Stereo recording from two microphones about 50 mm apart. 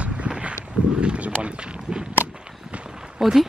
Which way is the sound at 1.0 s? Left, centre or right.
Right.